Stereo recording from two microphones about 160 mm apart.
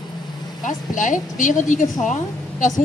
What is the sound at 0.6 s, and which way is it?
A woman's voice, 50° left (ahead or behind).